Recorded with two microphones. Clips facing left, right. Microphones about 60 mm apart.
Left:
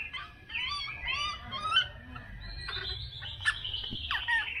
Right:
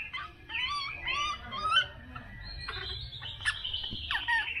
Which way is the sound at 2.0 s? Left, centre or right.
Centre.